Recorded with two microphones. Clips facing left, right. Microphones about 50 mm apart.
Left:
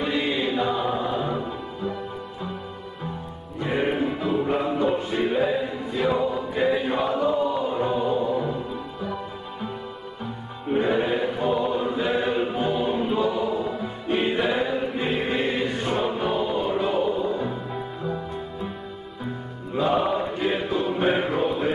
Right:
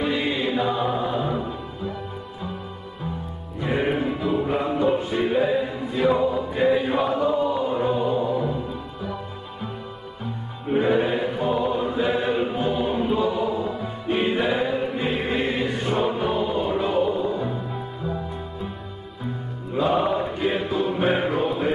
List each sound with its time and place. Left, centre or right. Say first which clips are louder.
0.0 s music: right 1 dB; centre
3.5 s music: right 1 dB; centre
10.7 s choir: right 2 dB; centre
19.7 s music: right 1 dB; centre